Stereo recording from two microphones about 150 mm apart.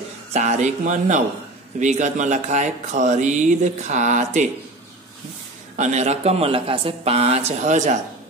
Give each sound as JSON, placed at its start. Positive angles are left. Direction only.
{"t": 0.3, "sound": "speech", "side_deg": -50}
{"t": 5.8, "sound": "speech", "side_deg": -50}